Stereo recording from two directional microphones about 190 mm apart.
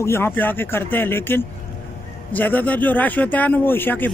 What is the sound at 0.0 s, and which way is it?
Speech, 10° left (ahead or behind).